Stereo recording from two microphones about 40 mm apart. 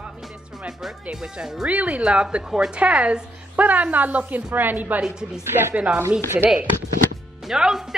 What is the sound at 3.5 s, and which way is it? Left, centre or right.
A woman's voice, right.